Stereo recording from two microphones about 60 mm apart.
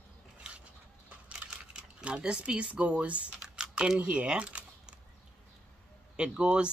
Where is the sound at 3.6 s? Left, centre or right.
Centre.